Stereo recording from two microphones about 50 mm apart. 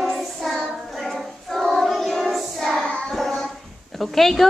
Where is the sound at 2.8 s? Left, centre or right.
Centre.